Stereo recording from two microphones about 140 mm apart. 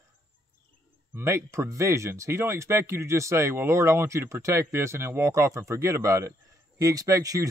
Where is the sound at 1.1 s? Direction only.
20° right (ahead or behind).